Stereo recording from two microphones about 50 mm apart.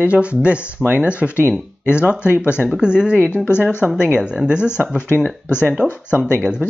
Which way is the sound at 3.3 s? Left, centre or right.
Left.